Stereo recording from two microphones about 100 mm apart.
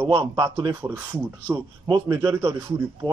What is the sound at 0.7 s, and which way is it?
Speech, 20° right (ahead or behind).